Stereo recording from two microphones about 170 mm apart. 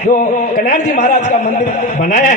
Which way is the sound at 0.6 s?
50° left (ahead or behind).